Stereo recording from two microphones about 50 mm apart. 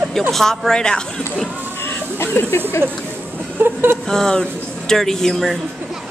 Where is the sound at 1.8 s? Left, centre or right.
Left.